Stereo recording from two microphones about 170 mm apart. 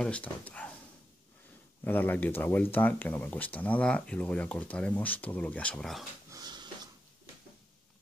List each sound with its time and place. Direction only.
0.0 s speech: 10° left (ahead or behind)
1.9 s speech: 10° left (ahead or behind)
6.3 s dog: 25° right (ahead or behind)